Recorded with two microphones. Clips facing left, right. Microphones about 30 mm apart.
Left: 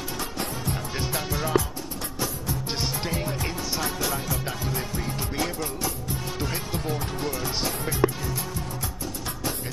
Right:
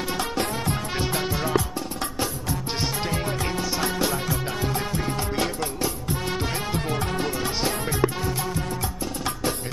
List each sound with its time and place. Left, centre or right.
1.5 s music: centre
3.8 s music: right
6.7 s music: right
8.0 s music: centre